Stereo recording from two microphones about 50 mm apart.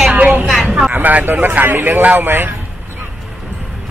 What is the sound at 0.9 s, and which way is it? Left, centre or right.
A man's voice, right.